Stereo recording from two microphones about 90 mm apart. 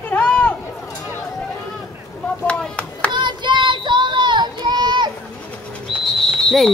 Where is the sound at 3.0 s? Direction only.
60° right (ahead or behind).